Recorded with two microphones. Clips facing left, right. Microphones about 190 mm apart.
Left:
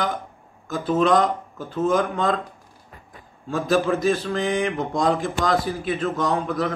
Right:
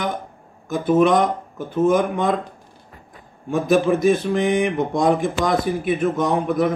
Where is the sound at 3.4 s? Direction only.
15° right (ahead or behind).